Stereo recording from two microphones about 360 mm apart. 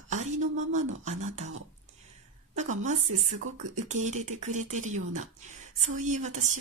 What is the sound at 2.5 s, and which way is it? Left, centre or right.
Speech, centre.